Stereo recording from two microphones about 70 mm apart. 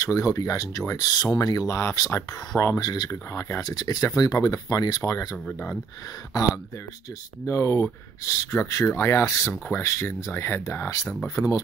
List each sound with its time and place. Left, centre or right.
0.0 s speech: left
2.8 s speech: left
5.5 s speech: centre
6.3 s speech: left
7.4 s speech: left
8.8 s speech: left
11.1 s speech: centre
11.3 s speech: left